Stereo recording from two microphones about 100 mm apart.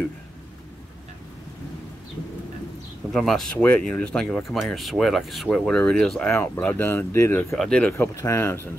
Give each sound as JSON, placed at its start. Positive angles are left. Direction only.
{"t": 3.1, "sound": "speech", "side_deg": 5}
{"t": 6.3, "sound": "speech", "side_deg": 20}
{"t": 7.5, "sound": "speech", "side_deg": 5}
{"t": 8.0, "sound": "speech", "side_deg": 30}